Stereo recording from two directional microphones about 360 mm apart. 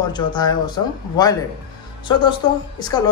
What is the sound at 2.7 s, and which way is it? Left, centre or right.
Speech, centre.